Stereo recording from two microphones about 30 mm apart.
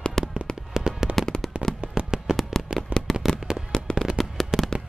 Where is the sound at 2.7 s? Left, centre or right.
Right.